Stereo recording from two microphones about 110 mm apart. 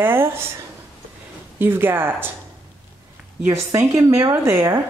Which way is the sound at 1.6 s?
20° right (ahead or behind).